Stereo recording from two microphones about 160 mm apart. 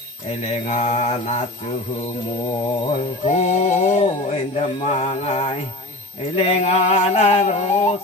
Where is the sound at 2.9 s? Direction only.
50° left (ahead or behind).